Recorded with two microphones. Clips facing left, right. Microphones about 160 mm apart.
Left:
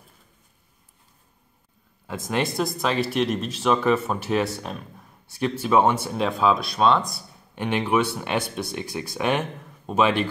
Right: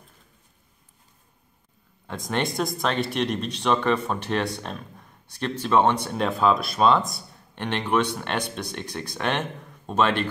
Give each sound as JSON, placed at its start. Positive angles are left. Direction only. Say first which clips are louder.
{"t": 2.0, "sound": "speech", "louder": "left 1 dB", "side_deg": 5}